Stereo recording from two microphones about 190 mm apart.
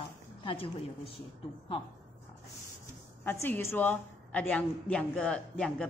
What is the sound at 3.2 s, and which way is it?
A woman's voice, 10° left (ahead or behind).